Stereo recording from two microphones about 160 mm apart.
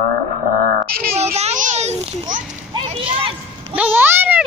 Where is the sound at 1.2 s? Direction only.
40° right (ahead or behind).